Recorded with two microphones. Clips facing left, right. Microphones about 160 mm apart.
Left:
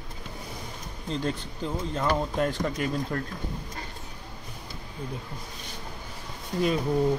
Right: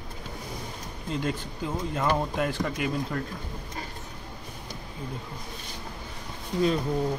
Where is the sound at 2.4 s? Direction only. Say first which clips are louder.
Left 1 dB; 45° left (ahead or behind).